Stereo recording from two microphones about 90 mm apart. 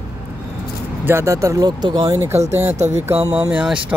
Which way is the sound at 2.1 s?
35° right (ahead or behind).